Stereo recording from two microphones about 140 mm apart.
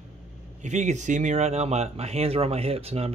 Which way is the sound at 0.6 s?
60° right (ahead or behind).